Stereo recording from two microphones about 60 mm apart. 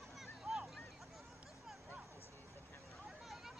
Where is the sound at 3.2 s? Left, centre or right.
Centre.